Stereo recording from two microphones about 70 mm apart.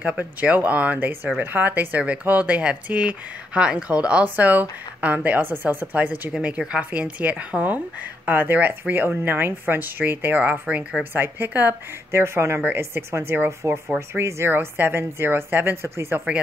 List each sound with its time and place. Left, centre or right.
0.0 s speech: right
11.1 s speech: right